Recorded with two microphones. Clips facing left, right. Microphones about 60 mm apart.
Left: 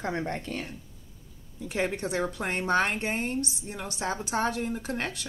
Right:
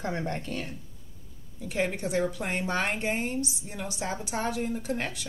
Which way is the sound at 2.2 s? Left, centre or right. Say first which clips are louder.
Right 2 dB; left.